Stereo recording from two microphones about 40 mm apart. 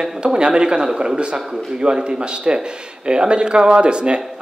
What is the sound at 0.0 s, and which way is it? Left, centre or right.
Speech, right.